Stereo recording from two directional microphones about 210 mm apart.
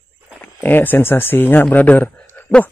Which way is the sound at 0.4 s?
10° left (ahead or behind).